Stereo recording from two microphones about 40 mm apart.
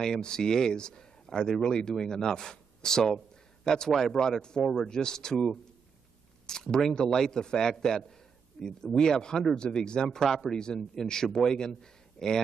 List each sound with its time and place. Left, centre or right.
0.0 s a man's voice: centre